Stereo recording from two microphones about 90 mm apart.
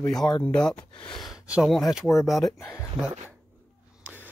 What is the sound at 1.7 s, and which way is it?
Speech, centre (ahead or behind).